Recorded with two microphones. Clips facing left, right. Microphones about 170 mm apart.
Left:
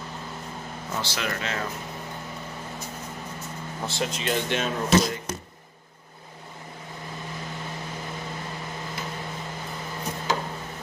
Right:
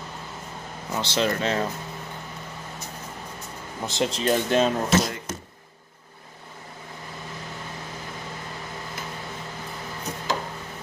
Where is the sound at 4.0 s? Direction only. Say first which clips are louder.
Right 5 dB; 35° right (ahead or behind).